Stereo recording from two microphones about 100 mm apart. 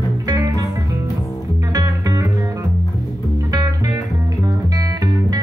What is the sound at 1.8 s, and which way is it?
Music, 40° right (ahead or behind).